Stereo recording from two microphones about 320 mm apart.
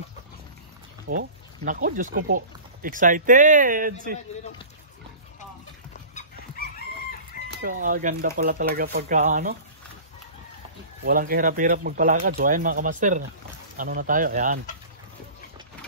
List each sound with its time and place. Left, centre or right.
1.0 s speech: right
7.6 s speech: right
11.1 s speech: right